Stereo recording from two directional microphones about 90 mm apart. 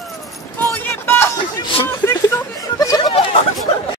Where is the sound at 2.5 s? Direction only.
40° left (ahead or behind).